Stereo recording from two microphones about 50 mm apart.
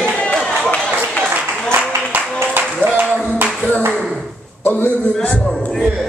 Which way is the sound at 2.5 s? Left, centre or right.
Right.